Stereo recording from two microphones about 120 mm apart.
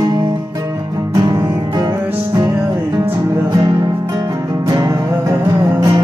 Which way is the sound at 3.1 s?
30° right (ahead or behind).